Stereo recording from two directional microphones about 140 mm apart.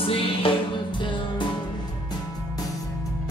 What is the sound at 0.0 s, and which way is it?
Music, 40° left (ahead or behind).